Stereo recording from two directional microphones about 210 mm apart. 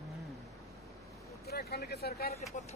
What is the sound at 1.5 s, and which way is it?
Speech, 50° left (ahead or behind).